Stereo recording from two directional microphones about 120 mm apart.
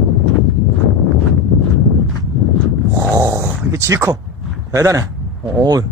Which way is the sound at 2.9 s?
30° right (ahead or behind).